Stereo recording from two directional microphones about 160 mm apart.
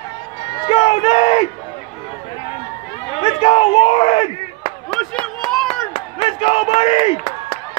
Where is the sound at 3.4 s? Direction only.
40° left (ahead or behind).